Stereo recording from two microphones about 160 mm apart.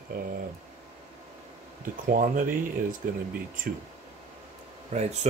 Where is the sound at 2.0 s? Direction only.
60° right (ahead or behind).